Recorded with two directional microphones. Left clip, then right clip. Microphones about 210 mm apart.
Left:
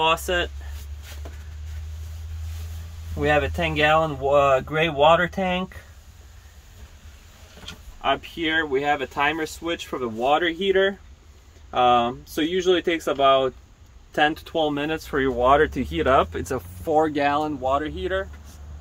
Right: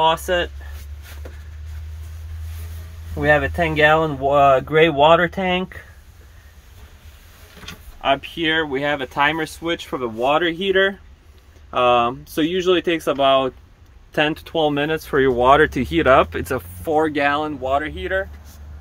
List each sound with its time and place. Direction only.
0.0 s speech: 10° right (ahead or behind)
3.2 s speech: 15° right (ahead or behind)
8.0 s speech: 35° right (ahead or behind)
16.8 s speech: 5° right (ahead or behind)